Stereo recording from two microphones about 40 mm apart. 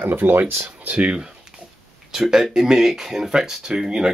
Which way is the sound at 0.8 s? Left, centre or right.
Right.